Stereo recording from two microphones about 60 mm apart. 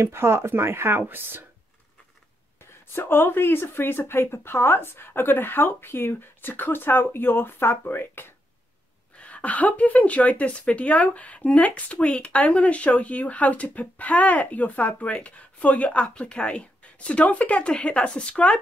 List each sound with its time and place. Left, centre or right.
0.0 s speech: right
2.9 s speech: left
9.1 s a woman's voice: left